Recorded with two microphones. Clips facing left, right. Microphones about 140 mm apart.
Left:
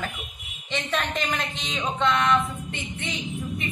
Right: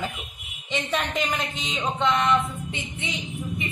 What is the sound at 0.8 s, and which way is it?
Speech, 5° right (ahead or behind).